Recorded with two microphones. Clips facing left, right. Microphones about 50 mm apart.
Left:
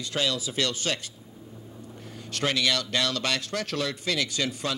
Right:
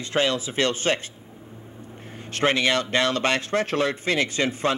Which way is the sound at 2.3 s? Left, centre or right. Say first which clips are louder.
Right 5 dB; right.